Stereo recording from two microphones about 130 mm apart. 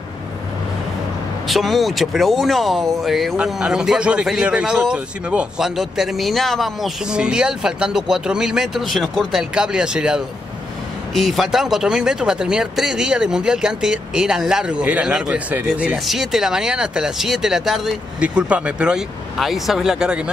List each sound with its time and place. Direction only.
1.5 s speech: centre (ahead or behind)